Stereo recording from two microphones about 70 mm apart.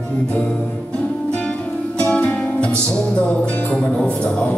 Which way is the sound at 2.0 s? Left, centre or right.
Centre.